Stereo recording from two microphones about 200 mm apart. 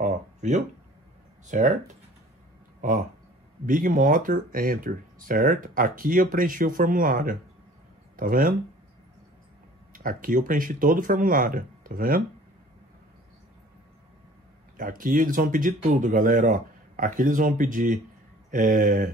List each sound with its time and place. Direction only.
0.0 s a sound: 35° right (ahead or behind)
1.5 s speech: 35° right (ahead or behind)
2.8 s speech: 40° right (ahead or behind)
9.9 s speech: 45° right (ahead or behind)
14.8 s speech: 45° right (ahead or behind)